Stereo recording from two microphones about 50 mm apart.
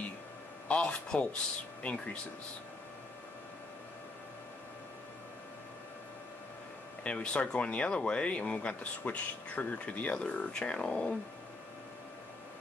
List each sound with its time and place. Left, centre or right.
0.7 s speech: left
7.0 s speech: left